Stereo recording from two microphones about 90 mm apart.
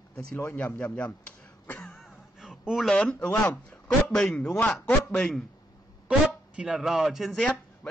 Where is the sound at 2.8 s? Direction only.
10° left (ahead or behind).